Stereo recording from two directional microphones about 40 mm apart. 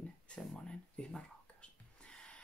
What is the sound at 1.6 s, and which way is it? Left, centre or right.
Whispering, left.